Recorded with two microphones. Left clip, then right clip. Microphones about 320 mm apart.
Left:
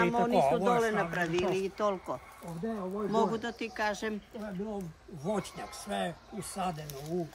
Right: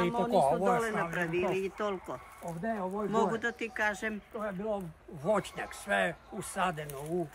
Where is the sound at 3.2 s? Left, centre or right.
Centre.